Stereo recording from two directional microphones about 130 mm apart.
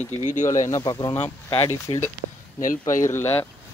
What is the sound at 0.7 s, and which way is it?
Speech, 25° left (ahead or behind).